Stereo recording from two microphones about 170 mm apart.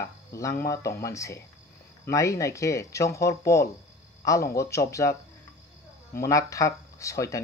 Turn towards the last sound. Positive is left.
turn(degrees=20)  # may be behind; listen again after turning